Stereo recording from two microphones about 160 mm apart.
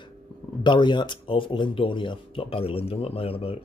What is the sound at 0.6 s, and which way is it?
Speech, 30° left (ahead or behind).